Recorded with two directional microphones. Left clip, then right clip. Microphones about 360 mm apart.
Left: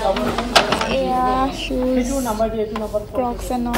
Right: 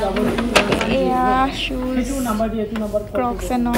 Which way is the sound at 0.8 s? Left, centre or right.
Centre.